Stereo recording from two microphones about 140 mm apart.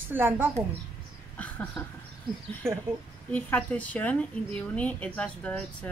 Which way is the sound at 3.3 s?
10° left (ahead or behind).